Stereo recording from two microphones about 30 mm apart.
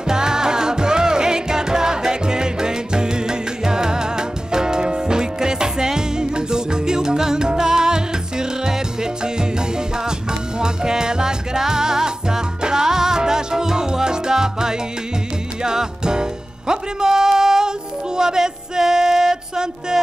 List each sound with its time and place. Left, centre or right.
0.1 s music: right
10.6 s music: right